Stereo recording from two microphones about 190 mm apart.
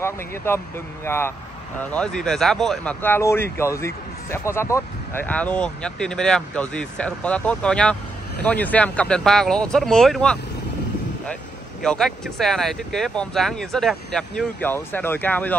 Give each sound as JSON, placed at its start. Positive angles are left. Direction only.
{"t": 0.0, "sound": "speech", "side_deg": 15}
{"t": 11.8, "sound": "speech", "side_deg": 0}